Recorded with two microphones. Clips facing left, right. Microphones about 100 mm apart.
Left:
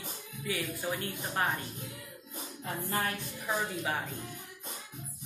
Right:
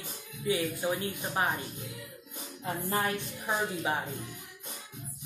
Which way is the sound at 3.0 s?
25° right (ahead or behind).